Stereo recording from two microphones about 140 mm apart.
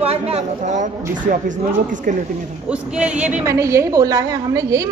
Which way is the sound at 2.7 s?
10° right (ahead or behind).